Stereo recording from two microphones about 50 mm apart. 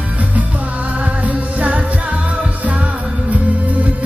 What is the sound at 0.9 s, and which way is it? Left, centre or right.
Music, right.